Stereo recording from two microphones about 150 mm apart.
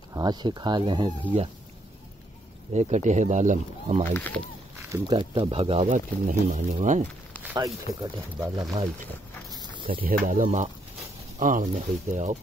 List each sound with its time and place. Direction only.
0.1 s speech: 30° right (ahead or behind)
2.7 s speech: 50° right (ahead or behind)
4.1 s speech: 10° left (ahead or behind)
4.9 s speech: 25° right (ahead or behind)
5.9 s speech: 60° right (ahead or behind)
7.5 s speech: 25° right (ahead or behind)
10.2 s speech: 55° right (ahead or behind)